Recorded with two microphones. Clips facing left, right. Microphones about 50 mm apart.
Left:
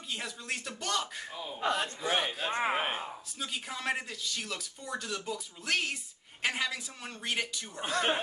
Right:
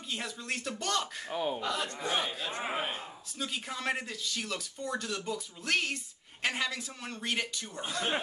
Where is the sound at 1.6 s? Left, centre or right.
Left.